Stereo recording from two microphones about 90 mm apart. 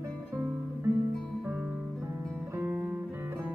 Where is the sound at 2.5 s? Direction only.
25° right (ahead or behind).